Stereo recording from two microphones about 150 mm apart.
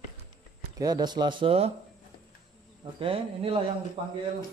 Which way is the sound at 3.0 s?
35° right (ahead or behind).